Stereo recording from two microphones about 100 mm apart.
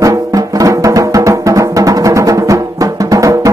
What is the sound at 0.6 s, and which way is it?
Music, 35° right (ahead or behind).